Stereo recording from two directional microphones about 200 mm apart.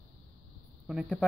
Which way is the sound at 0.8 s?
5° right (ahead or behind).